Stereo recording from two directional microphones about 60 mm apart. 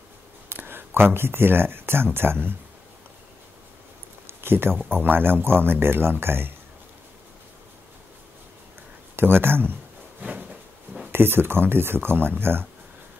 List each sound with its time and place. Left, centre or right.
0.5 s speech: right
4.3 s a sound: right
4.9 s speech: right
9.1 s speech: right
10.2 s a sound: right
11.1 s speech: right